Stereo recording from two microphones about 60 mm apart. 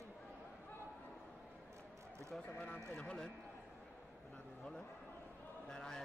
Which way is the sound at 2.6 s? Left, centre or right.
Left.